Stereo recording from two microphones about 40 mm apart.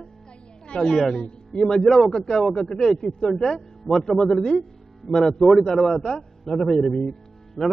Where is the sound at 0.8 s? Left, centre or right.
Centre.